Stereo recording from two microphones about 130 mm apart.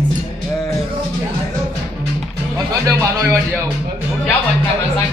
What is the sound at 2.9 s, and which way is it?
Speech, 25° right (ahead or behind).